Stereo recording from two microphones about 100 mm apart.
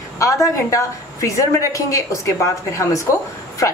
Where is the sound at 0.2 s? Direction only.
30° left (ahead or behind).